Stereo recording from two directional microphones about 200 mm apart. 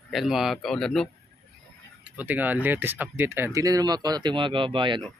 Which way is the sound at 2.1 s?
10° right (ahead or behind).